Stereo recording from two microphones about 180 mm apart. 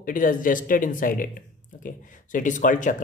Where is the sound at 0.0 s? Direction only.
50° left (ahead or behind).